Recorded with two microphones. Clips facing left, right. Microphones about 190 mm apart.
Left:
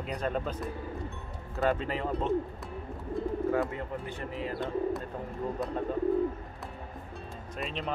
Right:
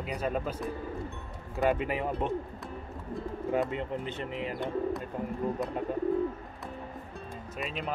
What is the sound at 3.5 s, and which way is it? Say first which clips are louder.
Speech: even; 20° right (ahead or behind).